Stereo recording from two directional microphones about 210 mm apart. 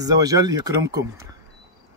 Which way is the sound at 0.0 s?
15° right (ahead or behind).